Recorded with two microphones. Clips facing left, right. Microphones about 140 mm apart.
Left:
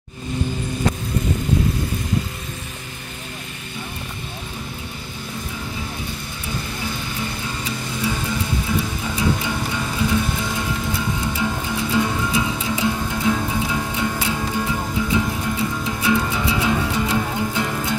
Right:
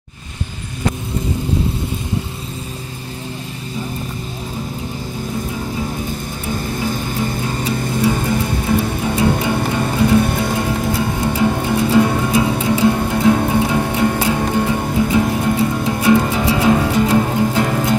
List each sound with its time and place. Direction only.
6.8 s music: 45° right (ahead or behind)